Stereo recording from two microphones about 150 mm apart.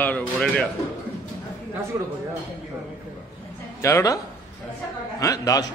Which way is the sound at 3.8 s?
20° left (ahead or behind).